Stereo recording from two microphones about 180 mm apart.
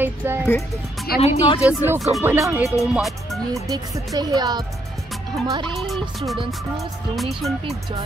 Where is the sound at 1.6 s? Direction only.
5° right (ahead or behind).